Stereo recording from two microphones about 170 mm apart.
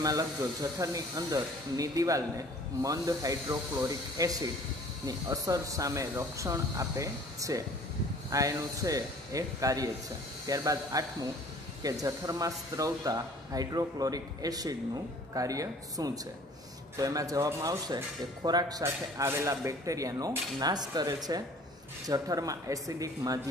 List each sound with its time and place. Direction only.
0.0 s speech: 20° right (ahead or behind)